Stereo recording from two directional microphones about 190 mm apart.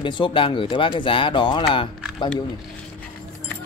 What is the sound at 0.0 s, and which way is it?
Speech, 25° left (ahead or behind).